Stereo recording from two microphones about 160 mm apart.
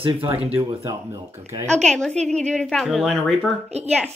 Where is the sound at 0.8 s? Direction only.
15° right (ahead or behind).